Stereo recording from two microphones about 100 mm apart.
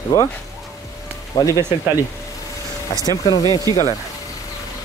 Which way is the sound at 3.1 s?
35° left (ahead or behind).